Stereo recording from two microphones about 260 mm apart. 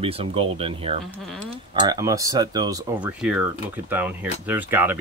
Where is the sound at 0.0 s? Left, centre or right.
Right.